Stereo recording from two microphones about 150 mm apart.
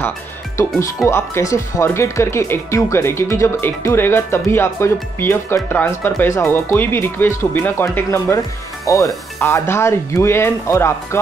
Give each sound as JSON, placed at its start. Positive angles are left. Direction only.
{"t": 0.6, "sound": "speech", "side_deg": 20}